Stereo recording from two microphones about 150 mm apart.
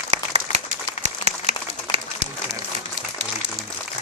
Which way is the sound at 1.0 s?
45° right (ahead or behind).